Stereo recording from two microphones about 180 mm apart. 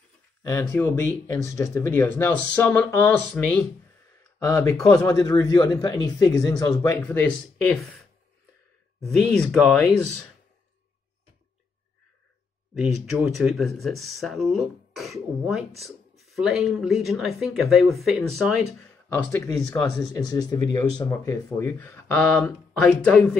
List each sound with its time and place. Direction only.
0.5 s speech: 15° left (ahead or behind)
4.2 s a sound: 15° left (ahead or behind)
4.8 s speech: 20° left (ahead or behind)
6.8 s speech: 10° left (ahead or behind)
9.0 s speech: centre (ahead or behind)
12.8 s speech: centre (ahead or behind)
19.1 s speech: 15° left (ahead or behind)